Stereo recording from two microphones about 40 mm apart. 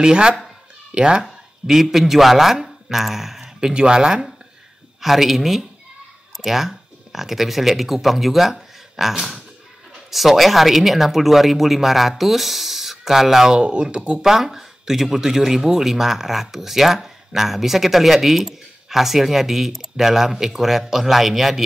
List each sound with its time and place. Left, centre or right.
0.0 s speech: right
1.7 s speech: centre
5.0 s speech: centre
13.6 s speech: right
14.2 s speech: centre